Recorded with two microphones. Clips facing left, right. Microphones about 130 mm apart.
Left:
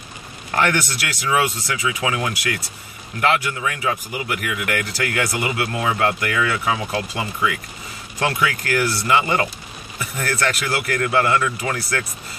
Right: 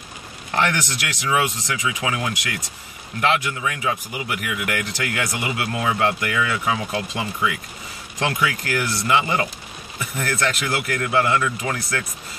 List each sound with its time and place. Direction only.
0.5 s speech: 15° right (ahead or behind)
9.2 s speech: 10° right (ahead or behind)
9.9 s speech: 20° right (ahead or behind)